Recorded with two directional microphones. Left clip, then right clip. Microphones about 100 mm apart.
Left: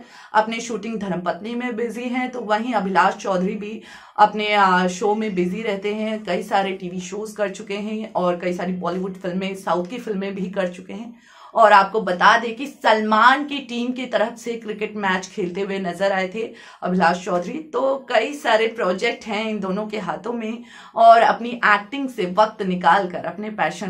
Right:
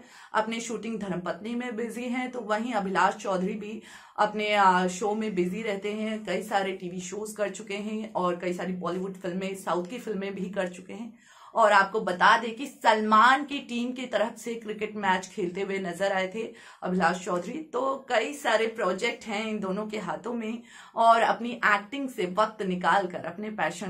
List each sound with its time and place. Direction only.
0.3 s a woman's voice: 30° left (ahead or behind)